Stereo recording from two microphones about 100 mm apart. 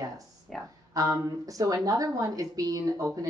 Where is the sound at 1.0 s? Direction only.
30° right (ahead or behind).